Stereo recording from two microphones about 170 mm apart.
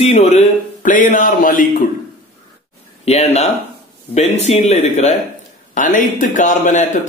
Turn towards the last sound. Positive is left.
turn(degrees=45)  # may be behind; listen again after turning